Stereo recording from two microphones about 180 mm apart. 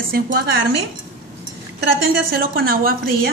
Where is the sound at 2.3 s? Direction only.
55° right (ahead or behind).